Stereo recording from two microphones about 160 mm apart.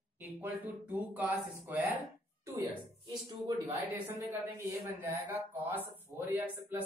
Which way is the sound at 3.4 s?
20° right (ahead or behind).